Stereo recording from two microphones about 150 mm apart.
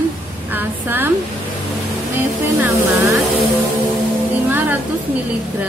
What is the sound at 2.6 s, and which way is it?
Speech, 20° right (ahead or behind).